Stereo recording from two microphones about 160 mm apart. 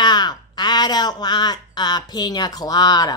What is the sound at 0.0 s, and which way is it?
A woman's voice, 25° left (ahead or behind).